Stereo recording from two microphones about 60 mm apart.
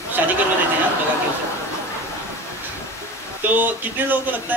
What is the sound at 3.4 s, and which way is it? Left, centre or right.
A man's voice, right.